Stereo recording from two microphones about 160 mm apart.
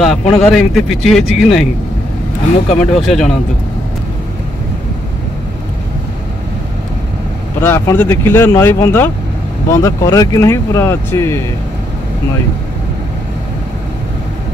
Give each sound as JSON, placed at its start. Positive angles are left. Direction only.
{"t": 0.0, "sound": "speech", "side_deg": 0}
{"t": 2.8, "sound": "speech", "side_deg": 0}
{"t": 7.6, "sound": "speech", "side_deg": 15}